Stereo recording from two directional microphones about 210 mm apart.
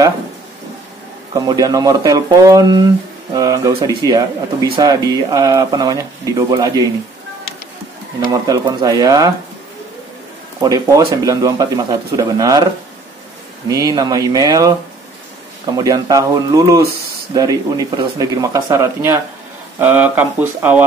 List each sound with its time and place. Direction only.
1.3 s speech: 20° right (ahead or behind)
8.2 s speech: 15° right (ahead or behind)
10.6 s speech: 15° right (ahead or behind)
13.7 s speech: 15° right (ahead or behind)